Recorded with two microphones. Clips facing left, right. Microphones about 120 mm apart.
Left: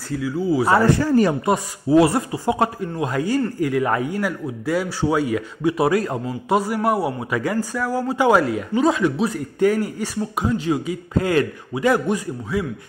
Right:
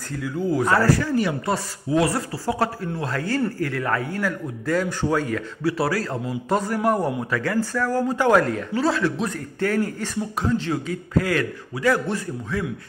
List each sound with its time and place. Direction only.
0.1 s speech: 5° left (ahead or behind)
0.7 s a man's voice: 25° left (ahead or behind)
1.0 s speech: 40° left (ahead or behind)
1.9 s speech: 25° left (ahead or behind)
11.1 s a man's voice: 25° left (ahead or behind)